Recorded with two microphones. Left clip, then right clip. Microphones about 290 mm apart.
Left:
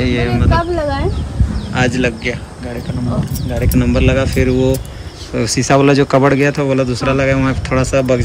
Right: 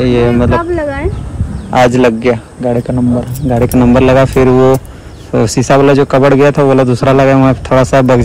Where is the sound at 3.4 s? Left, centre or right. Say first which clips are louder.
Right 11 dB; right.